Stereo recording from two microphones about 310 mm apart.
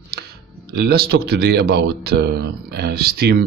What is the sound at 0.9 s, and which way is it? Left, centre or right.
Speech, right.